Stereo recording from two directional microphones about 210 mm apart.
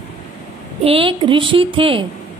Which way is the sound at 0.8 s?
25° right (ahead or behind).